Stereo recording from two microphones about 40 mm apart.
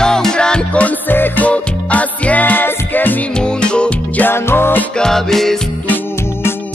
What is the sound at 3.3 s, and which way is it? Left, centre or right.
Music, left.